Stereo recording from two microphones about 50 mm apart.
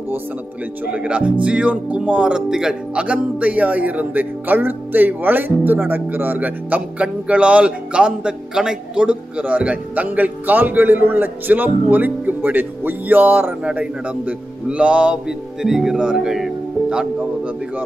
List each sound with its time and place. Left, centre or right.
0.9 s speech: right
2.5 s music: centre
3.0 s speech: right
15.2 s music: centre